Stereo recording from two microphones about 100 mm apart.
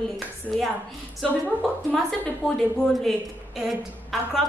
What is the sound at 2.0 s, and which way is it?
A woman's voice, 5° left (ahead or behind).